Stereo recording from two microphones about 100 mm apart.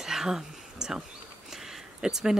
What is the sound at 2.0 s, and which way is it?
Speech, 5° right (ahead or behind).